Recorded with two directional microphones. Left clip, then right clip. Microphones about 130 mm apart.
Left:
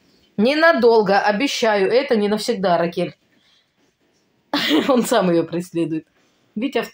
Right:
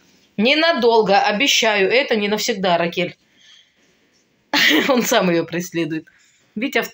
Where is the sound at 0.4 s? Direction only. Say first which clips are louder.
Left 1 dB; 30° left (ahead or behind).